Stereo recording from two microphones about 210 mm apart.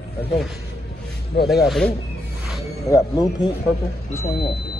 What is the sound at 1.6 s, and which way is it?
Speech, centre (ahead or behind).